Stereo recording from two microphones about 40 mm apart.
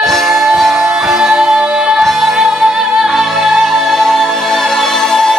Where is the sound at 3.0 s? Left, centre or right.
Centre.